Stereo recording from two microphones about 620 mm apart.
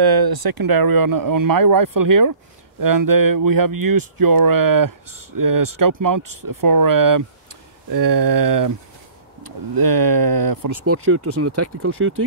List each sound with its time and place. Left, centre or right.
0.0 s speech: right
10.9 s speech: right